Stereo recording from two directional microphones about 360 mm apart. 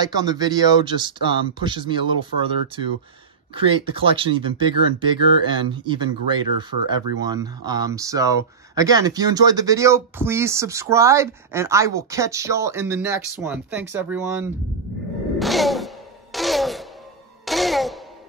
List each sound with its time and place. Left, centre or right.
0.0 s speech: centre
3.5 s speech: centre
15.3 s music: centre